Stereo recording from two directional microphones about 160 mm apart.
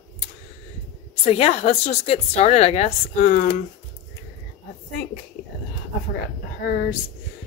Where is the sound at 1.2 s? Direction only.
40° left (ahead or behind); by 3.6 s 60° left (ahead or behind).